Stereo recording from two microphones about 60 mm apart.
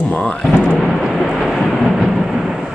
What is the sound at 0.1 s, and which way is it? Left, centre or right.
Music, left.